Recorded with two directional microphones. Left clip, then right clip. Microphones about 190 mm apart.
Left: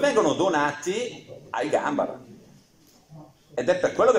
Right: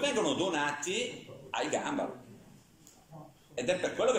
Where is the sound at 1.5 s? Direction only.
Centre (ahead or behind).